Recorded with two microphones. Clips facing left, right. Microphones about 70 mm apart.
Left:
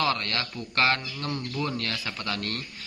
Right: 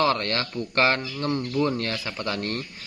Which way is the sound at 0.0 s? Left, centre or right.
Right.